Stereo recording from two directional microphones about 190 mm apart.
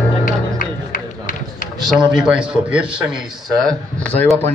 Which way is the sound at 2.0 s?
5° right (ahead or behind).